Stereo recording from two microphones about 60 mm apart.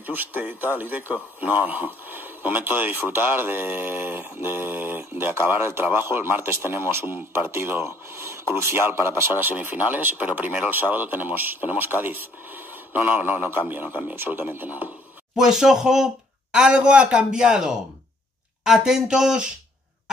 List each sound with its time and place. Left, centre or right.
0.0 s speech: right
14.1 s speech: right
15.3 s a man's voice: centre